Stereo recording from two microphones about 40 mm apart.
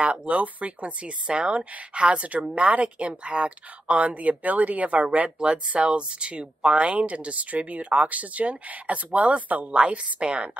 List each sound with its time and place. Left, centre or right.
0.0 s a woman's voice: right